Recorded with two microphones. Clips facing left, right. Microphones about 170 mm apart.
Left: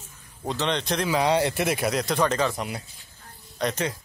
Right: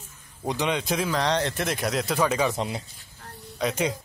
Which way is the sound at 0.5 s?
10° right (ahead or behind).